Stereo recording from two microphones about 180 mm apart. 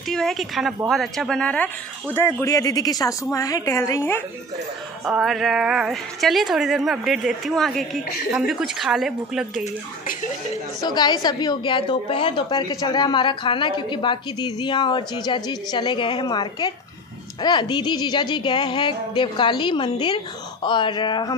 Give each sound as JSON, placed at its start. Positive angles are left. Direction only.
{"t": 0.1, "sound": "a woman's voice", "side_deg": 0}
{"t": 5.0, "sound": "a woman's voice", "side_deg": 0}
{"t": 10.8, "sound": "a woman's voice", "side_deg": 25}